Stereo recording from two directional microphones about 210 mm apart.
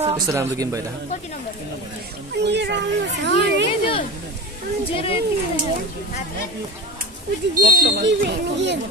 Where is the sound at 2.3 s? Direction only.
55° right (ahead or behind).